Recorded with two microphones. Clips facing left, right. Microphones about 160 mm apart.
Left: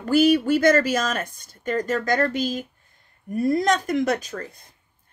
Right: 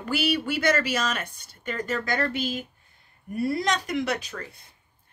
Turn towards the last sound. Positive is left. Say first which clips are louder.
# left 4 dB
turn(degrees=40)  # may be behind; listen again after turning